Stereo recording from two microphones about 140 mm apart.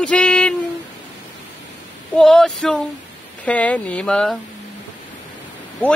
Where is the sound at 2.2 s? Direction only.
5° left (ahead or behind).